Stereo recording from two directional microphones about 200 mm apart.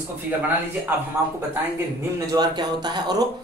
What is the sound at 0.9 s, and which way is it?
Speech, 10° right (ahead or behind).